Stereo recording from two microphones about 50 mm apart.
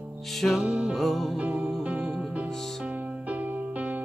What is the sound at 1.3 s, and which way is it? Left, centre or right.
Music, right.